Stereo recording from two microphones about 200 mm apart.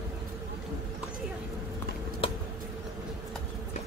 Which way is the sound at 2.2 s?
25° left (ahead or behind).